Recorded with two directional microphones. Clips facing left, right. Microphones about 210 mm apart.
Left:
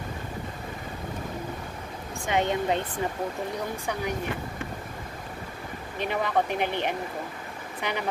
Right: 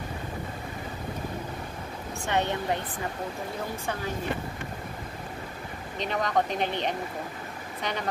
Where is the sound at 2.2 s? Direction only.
15° left (ahead or behind).